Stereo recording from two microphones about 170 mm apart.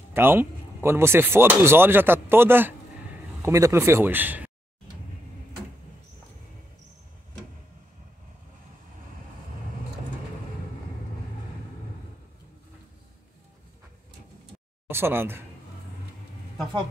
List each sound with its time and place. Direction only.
0.1 s speech: 15° right (ahead or behind)
14.9 s speech: 15° right (ahead or behind)